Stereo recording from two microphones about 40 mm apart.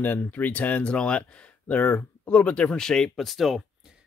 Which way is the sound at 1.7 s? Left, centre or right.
Left.